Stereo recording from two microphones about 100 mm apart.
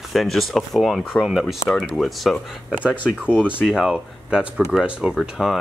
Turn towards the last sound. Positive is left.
turn(degrees=0)  # may be behind; listen again after turning